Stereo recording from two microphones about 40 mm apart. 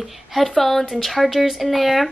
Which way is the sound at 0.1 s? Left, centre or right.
Centre.